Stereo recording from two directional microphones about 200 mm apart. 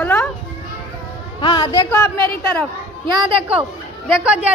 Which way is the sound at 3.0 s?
25° right (ahead or behind).